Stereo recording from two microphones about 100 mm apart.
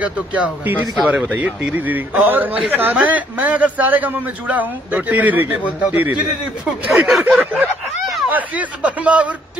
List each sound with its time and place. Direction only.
0.0 s a man's voice: 15° right (ahead or behind)
8.3 s a man's voice: 15° right (ahead or behind)